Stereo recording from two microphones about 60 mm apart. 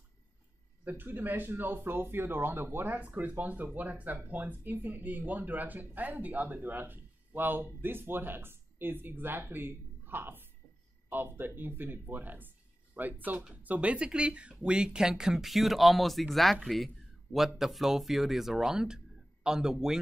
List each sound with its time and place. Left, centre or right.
0.8 s speech: right
3.0 s speech: right; by 20.0 s centre